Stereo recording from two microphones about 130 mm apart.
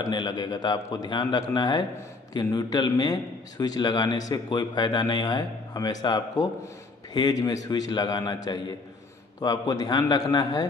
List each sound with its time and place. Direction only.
0.0 s a man's voice: 35° left (ahead or behind)